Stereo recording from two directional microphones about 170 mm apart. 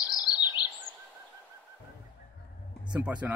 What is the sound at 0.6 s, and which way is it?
Bird vocalization, 25° left (ahead or behind).